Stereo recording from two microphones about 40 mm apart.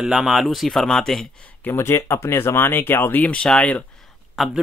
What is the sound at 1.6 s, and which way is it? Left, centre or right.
Speech, left.